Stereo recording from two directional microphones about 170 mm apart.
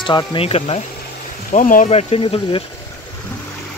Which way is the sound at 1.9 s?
35° left (ahead or behind).